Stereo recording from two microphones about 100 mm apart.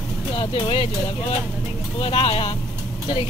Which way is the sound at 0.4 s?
60° left (ahead or behind).